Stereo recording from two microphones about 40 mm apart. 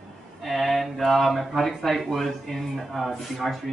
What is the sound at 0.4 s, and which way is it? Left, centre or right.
Speech, centre.